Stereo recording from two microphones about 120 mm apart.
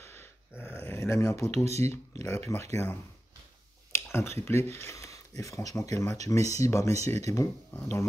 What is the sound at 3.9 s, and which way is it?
Speech, 20° left (ahead or behind).